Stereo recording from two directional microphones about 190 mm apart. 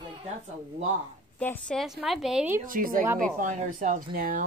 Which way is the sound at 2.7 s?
45° right (ahead or behind).